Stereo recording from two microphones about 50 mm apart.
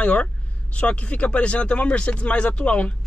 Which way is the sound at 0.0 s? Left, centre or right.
Left.